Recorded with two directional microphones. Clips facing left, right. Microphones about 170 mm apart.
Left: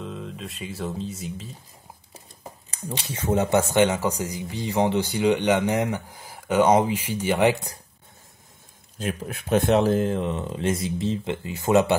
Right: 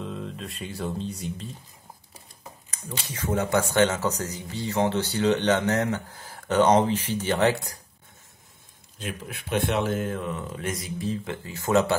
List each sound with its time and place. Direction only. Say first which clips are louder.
0.0 s speech: even; centre (ahead or behind)
2.7 s speech: left 4 dB; 25° left (ahead or behind); by 7.5 s 10° left (ahead or behind)
9.0 s speech: left 5 dB; 45° left (ahead or behind); by 11.9 s 20° left (ahead or behind)